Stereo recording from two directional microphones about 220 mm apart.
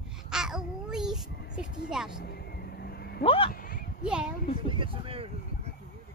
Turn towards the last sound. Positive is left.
turn(degrees=-25)  # may be behind; listen again after turning